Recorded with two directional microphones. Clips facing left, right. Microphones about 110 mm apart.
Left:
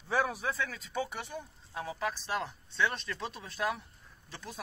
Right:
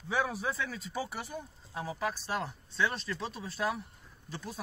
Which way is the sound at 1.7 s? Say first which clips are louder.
Right 1 dB; 30° right (ahead or behind).